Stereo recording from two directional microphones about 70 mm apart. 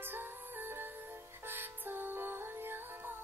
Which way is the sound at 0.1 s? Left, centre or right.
Right.